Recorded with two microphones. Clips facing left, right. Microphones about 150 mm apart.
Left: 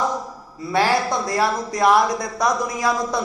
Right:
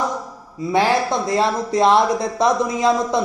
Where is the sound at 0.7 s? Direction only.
20° right (ahead or behind).